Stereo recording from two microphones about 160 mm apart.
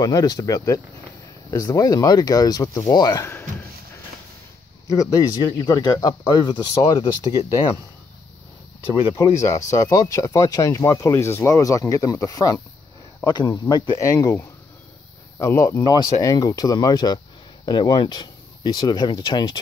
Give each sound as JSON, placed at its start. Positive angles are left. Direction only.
{"t": 0.0, "sound": "speech", "side_deg": 25}
{"t": 4.8, "sound": "speech", "side_deg": 20}
{"t": 9.1, "sound": "speech", "side_deg": 20}